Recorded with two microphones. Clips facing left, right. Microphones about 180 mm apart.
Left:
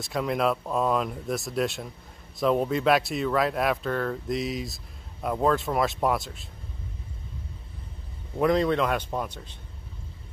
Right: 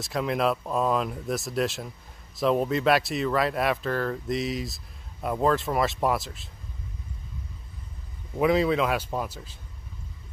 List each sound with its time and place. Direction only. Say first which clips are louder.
0.0 s speech: even; centre (ahead or behind)
8.4 s speech: even; 5° right (ahead or behind)